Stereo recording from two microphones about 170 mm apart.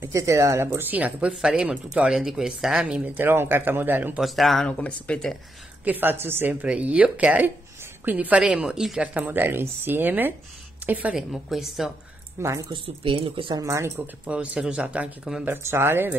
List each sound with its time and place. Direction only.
0.0 s speech: 20° right (ahead or behind); by 5.4 s 5° left (ahead or behind)
5.9 s a woman's voice: 10° right (ahead or behind)
12.4 s speech: 15° right (ahead or behind)
12.8 s speech: 35° right (ahead or behind)
13.7 s speech: 15° right (ahead or behind)